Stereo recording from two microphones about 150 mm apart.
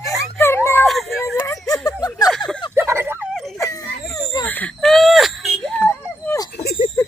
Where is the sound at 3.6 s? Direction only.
20° left (ahead or behind).